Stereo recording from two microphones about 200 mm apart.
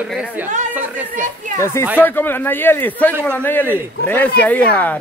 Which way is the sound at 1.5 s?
15° left (ahead or behind).